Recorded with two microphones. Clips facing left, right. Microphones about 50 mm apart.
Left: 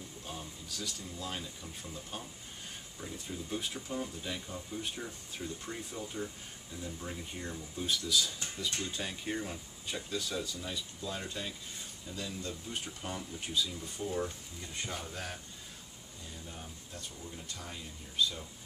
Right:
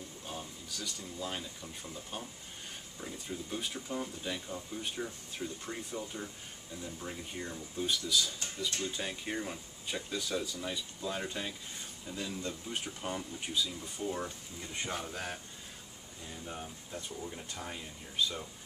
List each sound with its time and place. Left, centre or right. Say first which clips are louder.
0.3 s speech: right 1 dB; centre
14.7 s speech: right 3 dB; right